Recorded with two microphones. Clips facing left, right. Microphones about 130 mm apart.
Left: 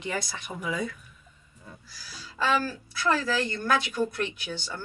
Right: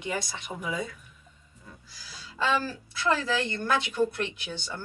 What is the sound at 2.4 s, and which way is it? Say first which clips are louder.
A woman's voice: left 1 dB; 20° right (ahead or behind).